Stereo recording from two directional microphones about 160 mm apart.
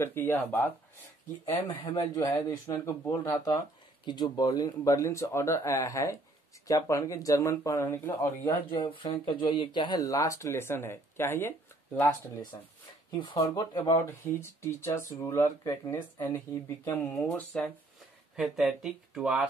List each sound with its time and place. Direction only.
0.0 s speech: 15° left (ahead or behind)
1.7 s speech: 30° left (ahead or behind); by 12.1 s 10° left (ahead or behind)
13.1 s speech: 25° left (ahead or behind)
13.6 s speech: 15° left (ahead or behind)
18.3 s speech: 5° right (ahead or behind)